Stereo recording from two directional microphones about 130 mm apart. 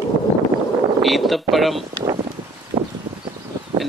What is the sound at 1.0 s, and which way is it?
Speech, centre (ahead or behind).